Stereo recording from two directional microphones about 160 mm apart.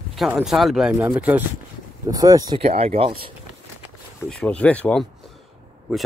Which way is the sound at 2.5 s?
40° right (ahead or behind).